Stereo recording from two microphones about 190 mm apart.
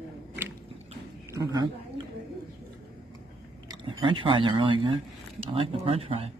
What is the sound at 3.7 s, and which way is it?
Speech, 25° right (ahead or behind).